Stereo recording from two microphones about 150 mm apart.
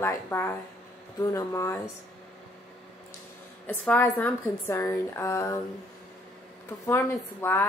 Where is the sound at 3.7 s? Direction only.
10° left (ahead or behind).